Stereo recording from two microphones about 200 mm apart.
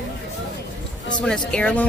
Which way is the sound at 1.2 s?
5° left (ahead or behind).